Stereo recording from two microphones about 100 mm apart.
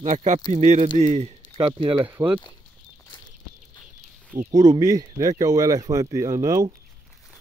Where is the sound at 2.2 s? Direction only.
35° right (ahead or behind).